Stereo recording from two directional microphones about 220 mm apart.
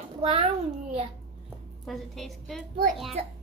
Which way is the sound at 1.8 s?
Centre (ahead or behind).